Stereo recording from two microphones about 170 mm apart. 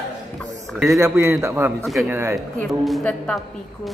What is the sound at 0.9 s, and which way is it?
A man's voice, 15° right (ahead or behind).